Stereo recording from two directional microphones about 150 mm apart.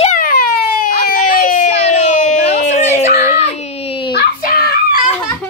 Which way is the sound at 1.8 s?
50° left (ahead or behind).